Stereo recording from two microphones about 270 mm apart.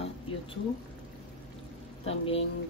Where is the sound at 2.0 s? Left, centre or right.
Left.